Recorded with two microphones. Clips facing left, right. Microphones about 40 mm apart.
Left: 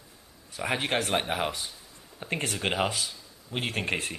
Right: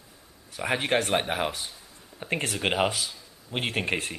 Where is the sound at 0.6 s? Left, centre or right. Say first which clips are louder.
Right 3 dB; centre.